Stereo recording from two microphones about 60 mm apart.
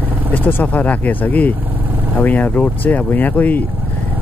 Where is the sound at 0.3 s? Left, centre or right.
Left.